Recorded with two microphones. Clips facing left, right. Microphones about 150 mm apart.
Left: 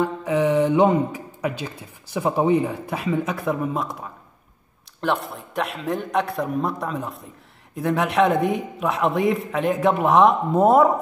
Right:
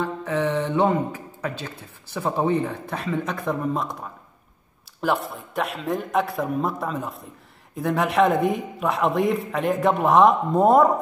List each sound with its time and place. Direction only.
0.0 s a man's voice: 10° left (ahead or behind)